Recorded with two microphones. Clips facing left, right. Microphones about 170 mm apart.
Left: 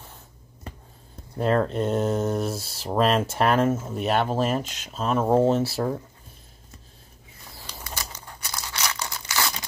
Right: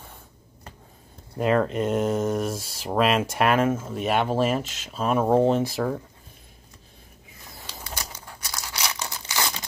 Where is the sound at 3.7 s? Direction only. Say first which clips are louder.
Even; 10° left (ahead or behind).